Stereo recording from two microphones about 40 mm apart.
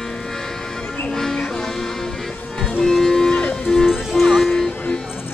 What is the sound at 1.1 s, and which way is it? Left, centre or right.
Music, centre.